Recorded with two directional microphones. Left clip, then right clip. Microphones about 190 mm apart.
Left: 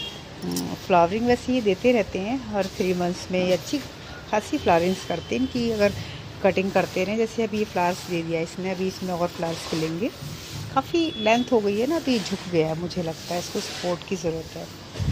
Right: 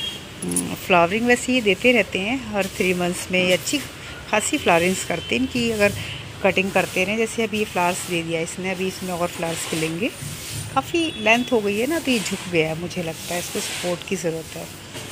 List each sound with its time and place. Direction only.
0.8 s speech: centre (ahead or behind)
10.7 s speech: 10° left (ahead or behind)
13.8 s speech: centre (ahead or behind)